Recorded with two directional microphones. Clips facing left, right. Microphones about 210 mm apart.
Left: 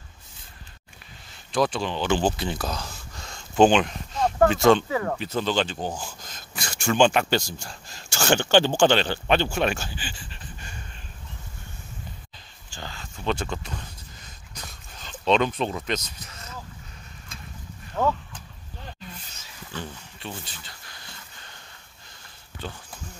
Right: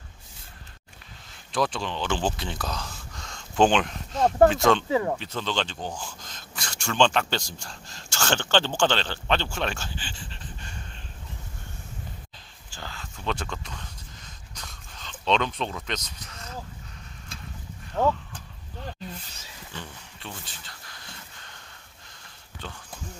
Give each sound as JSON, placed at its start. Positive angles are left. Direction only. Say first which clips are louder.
{"t": 1.5, "sound": "speech", "louder": "left 3 dB", "side_deg": 0}
{"t": 4.8, "sound": "speech", "louder": "right 2 dB", "side_deg": -25}
{"t": 5.2, "sound": "speech", "louder": "left 5 dB", "side_deg": 5}
{"t": 12.7, "sound": "a sound", "louder": "left 2 dB", "side_deg": 0}
{"t": 20.2, "sound": "speech", "louder": "left 3 dB", "side_deg": 5}
{"t": 22.6, "sound": "speech", "louder": "left 4 dB", "side_deg": 5}